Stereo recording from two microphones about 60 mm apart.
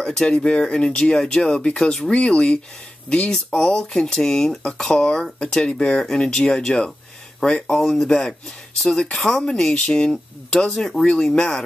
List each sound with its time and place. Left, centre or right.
0.0 s speech: centre
2.1 s speech: centre